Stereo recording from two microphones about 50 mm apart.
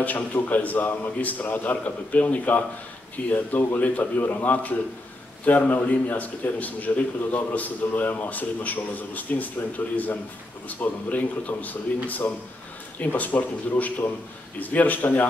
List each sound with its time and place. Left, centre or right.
0.0 s a man's voice: left